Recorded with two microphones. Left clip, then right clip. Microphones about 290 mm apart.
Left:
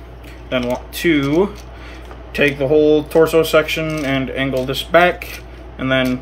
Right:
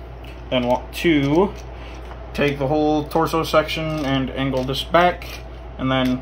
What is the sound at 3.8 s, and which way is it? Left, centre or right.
Speech, left.